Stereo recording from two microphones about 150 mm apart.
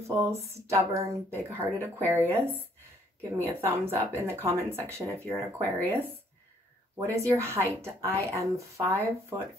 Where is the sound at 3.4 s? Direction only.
15° right (ahead or behind).